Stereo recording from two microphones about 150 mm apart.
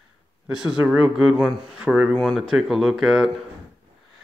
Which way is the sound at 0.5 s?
5° right (ahead or behind).